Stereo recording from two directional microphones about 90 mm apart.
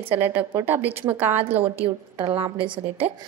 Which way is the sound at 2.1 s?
55° right (ahead or behind).